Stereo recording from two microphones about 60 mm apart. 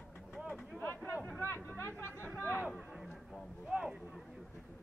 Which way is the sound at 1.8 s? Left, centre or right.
Left.